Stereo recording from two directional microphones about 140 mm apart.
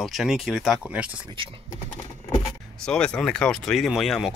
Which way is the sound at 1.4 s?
40° right (ahead or behind).